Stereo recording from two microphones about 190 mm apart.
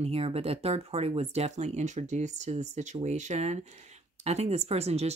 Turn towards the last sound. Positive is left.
turn(degrees=-35)  # may be behind; listen again after turning